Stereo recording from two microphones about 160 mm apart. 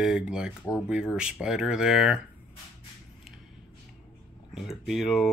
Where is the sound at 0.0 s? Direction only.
5° right (ahead or behind).